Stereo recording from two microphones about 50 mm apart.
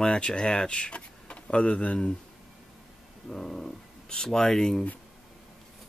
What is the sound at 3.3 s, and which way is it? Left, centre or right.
Speech, centre.